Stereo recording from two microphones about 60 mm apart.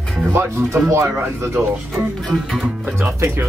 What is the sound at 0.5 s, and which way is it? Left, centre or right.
Speech, right.